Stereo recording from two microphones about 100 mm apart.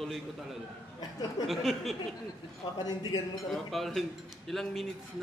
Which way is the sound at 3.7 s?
Centre (ahead or behind).